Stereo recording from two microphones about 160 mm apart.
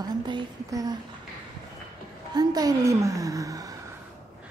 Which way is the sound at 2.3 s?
25° right (ahead or behind).